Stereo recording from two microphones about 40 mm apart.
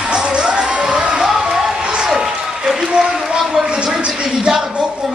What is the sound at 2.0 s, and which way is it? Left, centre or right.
Applause, centre.